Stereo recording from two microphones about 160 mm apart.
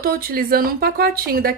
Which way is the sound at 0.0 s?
70° right (ahead or behind).